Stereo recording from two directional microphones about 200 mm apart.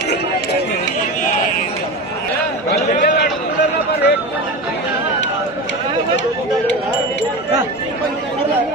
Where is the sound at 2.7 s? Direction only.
55° left (ahead or behind).